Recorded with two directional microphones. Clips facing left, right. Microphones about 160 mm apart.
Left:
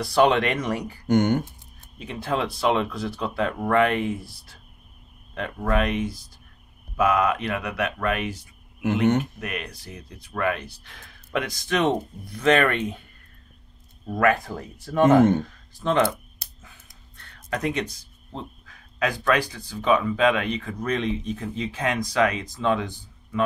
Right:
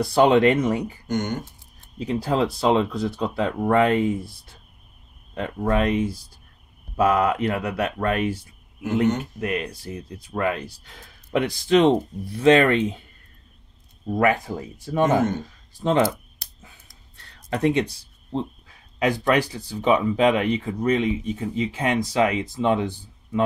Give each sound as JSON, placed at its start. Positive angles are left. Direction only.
{"t": 0.0, "sound": "speech", "side_deg": -25}
{"t": 1.0, "sound": "speech", "side_deg": 55}
{"t": 2.0, "sound": "speech", "side_deg": -35}
{"t": 5.4, "sound": "speech", "side_deg": -30}
{"t": 14.1, "sound": "speech", "side_deg": -20}
{"t": 15.0, "sound": "speech", "side_deg": 55}
{"t": 17.5, "sound": "speech", "side_deg": -25}
{"t": 20.9, "sound": "speech", "side_deg": -10}
{"t": 21.9, "sound": "speech", "side_deg": -25}